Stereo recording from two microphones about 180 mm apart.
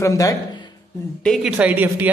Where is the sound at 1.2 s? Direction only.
5° right (ahead or behind).